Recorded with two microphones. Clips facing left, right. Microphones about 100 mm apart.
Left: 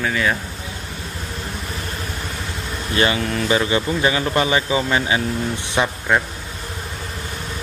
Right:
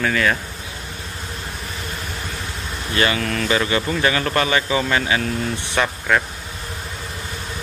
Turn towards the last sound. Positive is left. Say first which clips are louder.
# left 1 dB
turn(degrees=20)  # may be behind; listen again after turning